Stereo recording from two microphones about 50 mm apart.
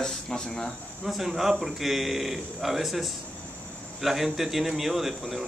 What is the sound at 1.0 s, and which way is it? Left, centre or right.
A man's voice, centre.